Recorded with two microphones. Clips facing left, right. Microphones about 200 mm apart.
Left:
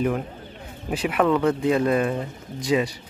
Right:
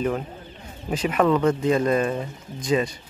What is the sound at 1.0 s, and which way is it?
Speech, 5° left (ahead or behind).